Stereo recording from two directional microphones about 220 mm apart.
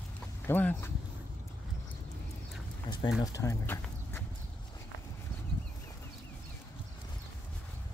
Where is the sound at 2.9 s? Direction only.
20° left (ahead or behind).